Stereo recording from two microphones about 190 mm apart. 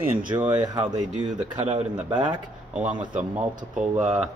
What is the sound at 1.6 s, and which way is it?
Speech, 35° right (ahead or behind).